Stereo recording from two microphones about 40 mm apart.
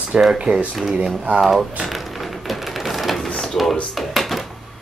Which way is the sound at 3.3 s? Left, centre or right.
Centre.